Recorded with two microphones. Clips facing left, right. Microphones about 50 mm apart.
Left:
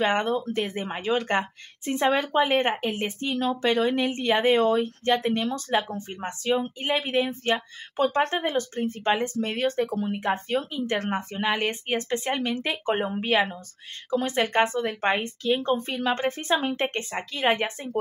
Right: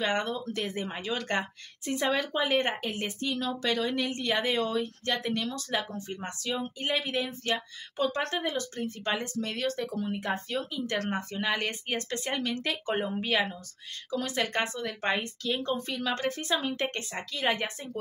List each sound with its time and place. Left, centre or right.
0.0 s speech: left